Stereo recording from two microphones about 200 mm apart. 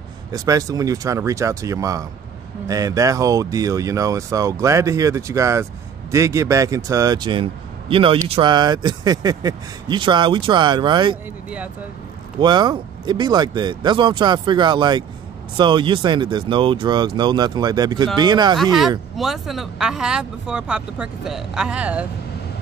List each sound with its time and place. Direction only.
0.3 s speech: 15° right (ahead or behind)
12.4 s speech: 20° right (ahead or behind)
18.6 s speech: centre (ahead or behind)